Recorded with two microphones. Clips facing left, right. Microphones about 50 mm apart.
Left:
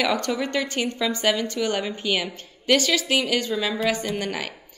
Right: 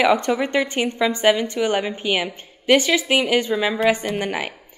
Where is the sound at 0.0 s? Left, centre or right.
Right.